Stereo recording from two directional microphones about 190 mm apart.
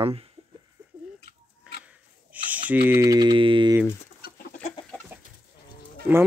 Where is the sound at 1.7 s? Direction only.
5° right (ahead or behind).